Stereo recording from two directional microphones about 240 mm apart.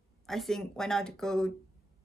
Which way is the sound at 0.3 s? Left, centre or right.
Centre.